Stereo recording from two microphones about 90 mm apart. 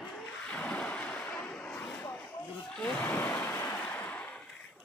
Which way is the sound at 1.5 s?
10° left (ahead or behind).